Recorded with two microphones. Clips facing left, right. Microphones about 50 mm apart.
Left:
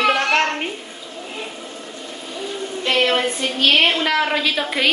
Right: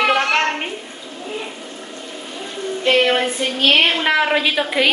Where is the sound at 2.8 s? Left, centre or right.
Centre.